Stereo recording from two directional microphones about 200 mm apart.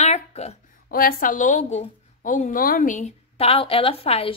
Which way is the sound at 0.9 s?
45° left (ahead or behind).